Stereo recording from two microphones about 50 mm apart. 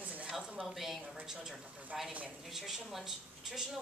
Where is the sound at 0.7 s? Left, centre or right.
Centre.